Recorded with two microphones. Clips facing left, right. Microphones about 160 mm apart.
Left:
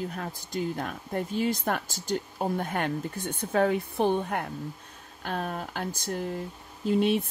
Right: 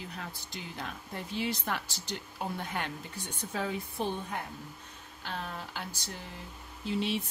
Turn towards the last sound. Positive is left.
turn(degrees=50)  # may be behind; listen again after turning